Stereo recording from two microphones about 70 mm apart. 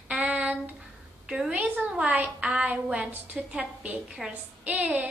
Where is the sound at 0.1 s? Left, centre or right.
Centre.